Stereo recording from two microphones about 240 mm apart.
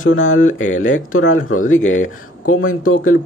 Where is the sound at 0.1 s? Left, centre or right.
Left.